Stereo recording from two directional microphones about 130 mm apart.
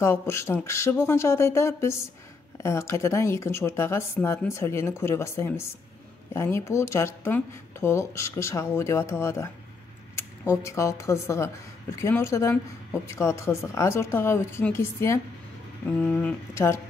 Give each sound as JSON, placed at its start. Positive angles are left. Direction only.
{"t": 0.0, "sound": "speech", "side_deg": 20}
{"t": 16.0, "sound": "speech", "side_deg": 10}
{"t": 16.5, "sound": "speech", "side_deg": 20}